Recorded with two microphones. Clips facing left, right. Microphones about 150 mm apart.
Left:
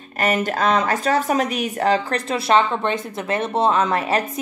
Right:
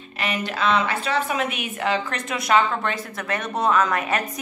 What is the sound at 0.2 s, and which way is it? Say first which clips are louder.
Speech: left 5 dB; 45° left (ahead or behind).